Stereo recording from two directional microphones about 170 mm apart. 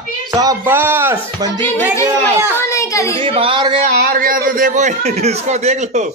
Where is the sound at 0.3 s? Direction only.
20° right (ahead or behind).